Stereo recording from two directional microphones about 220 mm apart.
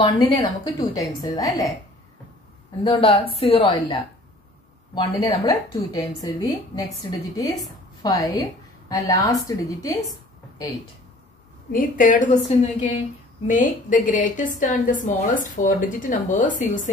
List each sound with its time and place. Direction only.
0.0 s a woman's voice: 20° left (ahead or behind)
2.8 s a woman's voice: 25° left (ahead or behind)
4.9 s a woman's voice: 20° left (ahead or behind)
11.7 s a woman's voice: 35° left (ahead or behind)